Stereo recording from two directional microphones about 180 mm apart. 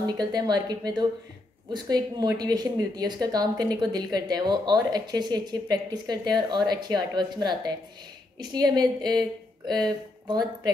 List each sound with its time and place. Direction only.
0.0 s speech: 20° right (ahead or behind)